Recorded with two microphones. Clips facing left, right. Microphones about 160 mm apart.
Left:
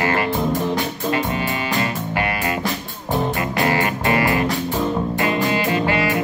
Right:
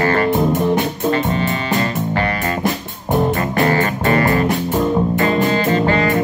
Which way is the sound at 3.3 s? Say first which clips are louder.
Right 4 dB; 40° right (ahead or behind).